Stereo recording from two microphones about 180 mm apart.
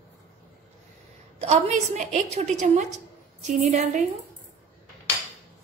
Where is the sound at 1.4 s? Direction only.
40° right (ahead or behind).